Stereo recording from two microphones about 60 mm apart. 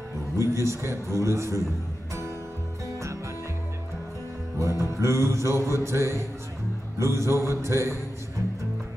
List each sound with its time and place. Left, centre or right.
0.4 s music: right
4.6 s music: right
7.0 s a sound: right